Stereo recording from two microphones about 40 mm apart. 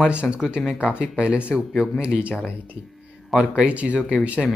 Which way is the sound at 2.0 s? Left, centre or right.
Right.